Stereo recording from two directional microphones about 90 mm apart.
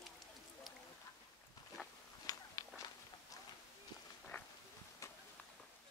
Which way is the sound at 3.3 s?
40° left (ahead or behind).